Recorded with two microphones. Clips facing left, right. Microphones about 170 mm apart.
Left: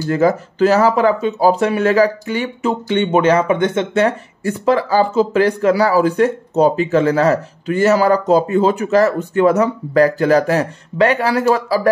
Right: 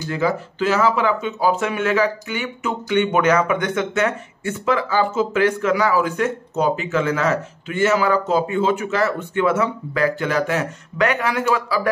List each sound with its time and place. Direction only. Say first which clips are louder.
0.1 s speech: left 7 dB; 45° left (ahead or behind)